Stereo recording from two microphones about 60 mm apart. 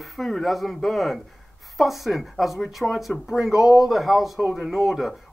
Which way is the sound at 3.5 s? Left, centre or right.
Left.